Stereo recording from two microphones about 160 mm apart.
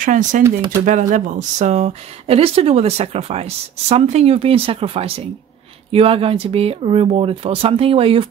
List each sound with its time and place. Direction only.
0.0 s speech: 55° right (ahead or behind); by 8.3 s 35° right (ahead or behind)